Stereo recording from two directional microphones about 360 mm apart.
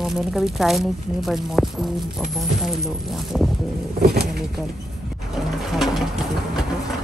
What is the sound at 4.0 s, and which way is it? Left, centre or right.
Speech, right.